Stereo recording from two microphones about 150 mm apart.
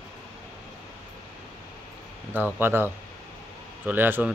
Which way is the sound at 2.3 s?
15° right (ahead or behind).